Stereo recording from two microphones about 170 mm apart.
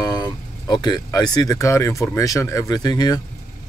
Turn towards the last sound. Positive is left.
turn(degrees=25)  # may be behind; listen again after turning